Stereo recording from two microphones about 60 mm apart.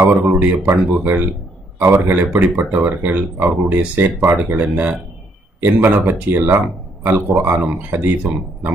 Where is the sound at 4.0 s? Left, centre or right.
Right.